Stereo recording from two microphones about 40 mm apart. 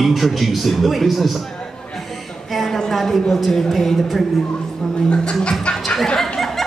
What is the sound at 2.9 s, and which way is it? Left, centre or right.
A man's voice, centre.